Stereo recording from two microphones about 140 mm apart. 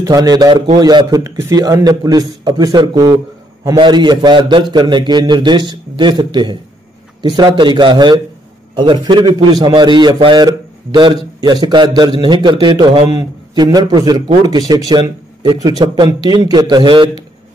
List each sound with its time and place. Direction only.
0.0 s a man's voice: 25° right (ahead or behind)